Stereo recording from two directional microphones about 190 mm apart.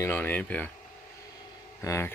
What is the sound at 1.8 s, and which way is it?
Speech, 15° left (ahead or behind).